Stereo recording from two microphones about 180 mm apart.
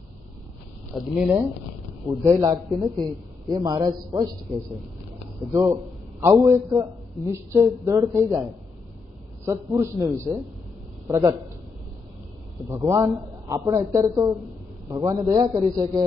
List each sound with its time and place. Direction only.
0.9 s speech: centre (ahead or behind)
2.0 s a man's voice: 15° right (ahead or behind)
9.4 s a man's voice: 15° right (ahead or behind)
12.6 s a man's voice: 15° right (ahead or behind)